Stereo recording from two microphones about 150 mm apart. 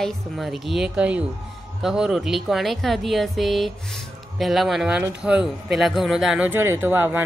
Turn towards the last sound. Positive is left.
turn(degrees=-15)  # may be behind; listen again after turning